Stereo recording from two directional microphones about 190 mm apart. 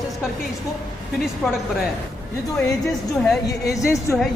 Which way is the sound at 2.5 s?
5° left (ahead or behind).